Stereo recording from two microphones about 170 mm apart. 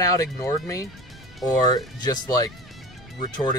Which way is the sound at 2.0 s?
20° left (ahead or behind).